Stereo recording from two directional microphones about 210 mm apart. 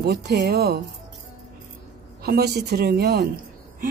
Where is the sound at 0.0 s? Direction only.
50° right (ahead or behind).